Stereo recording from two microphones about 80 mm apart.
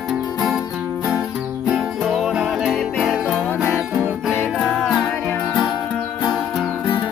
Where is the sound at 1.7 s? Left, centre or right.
Centre.